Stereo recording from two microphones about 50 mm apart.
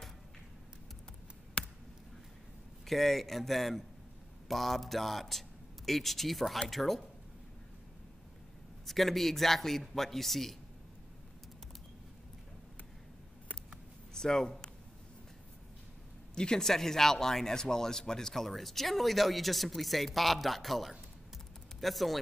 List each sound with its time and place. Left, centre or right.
1.6 s a sound: left
2.9 s speech: centre
8.8 s speech: centre
14.1 s speech: centre
16.3 s speech: centre